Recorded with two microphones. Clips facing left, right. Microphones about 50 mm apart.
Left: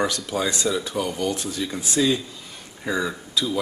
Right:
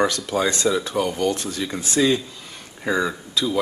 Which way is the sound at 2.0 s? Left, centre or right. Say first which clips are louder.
Right 2 dB; centre.